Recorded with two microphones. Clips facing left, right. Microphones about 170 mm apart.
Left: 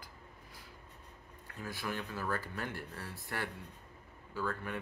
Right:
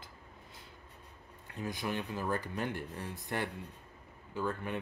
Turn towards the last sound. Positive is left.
turn(degrees=-20)  # may be behind; listen again after turning